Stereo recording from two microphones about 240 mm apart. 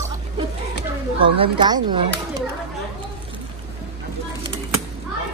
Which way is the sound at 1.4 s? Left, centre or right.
Centre.